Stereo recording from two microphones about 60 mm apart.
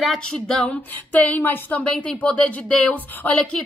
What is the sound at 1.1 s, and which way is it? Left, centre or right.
A woman's voice, left.